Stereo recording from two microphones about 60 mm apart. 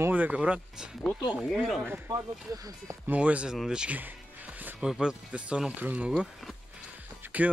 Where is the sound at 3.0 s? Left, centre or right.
Right.